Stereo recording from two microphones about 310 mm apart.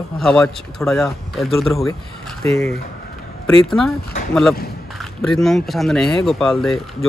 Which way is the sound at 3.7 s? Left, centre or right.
Centre.